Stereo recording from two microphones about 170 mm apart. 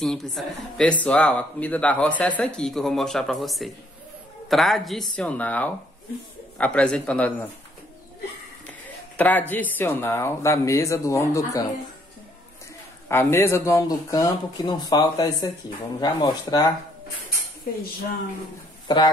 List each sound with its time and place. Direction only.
0.0 s speech: centre (ahead or behind)
9.1 s speech: 10° left (ahead or behind)
13.1 s speech: 15° left (ahead or behind)
18.9 s speech: 25° left (ahead or behind)